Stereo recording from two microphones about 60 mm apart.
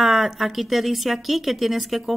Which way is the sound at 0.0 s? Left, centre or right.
Centre.